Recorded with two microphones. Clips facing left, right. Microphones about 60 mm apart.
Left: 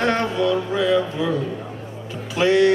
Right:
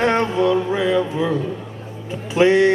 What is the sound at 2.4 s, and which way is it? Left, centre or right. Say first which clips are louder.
Speech: right 2 dB; right.